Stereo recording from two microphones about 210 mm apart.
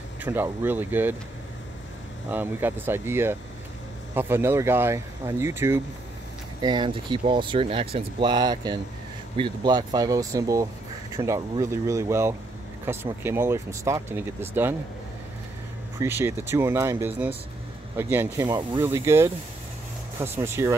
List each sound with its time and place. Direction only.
0.2 s speech: 10° right (ahead or behind)
2.2 s speech: 10° right (ahead or behind)
6.6 s speech: 20° right (ahead or behind)
16.0 s speech: 10° right (ahead or behind)